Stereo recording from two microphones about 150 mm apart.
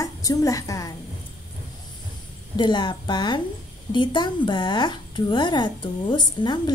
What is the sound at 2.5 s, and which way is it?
A woman's voice, 30° left (ahead or behind).